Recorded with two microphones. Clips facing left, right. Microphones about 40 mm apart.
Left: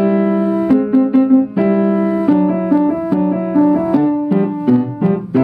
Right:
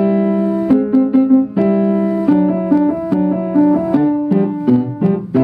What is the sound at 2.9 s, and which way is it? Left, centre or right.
Music, left.